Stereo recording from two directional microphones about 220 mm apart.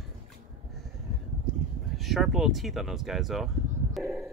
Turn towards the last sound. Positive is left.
turn(degrees=0)  # may be behind; listen again after turning